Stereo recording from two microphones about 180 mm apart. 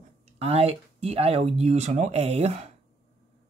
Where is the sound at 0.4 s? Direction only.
35° right (ahead or behind).